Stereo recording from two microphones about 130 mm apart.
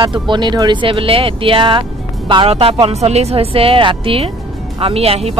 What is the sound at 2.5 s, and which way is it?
Speech, 50° right (ahead or behind).